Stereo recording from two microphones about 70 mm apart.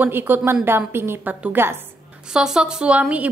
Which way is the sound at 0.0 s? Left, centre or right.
Right.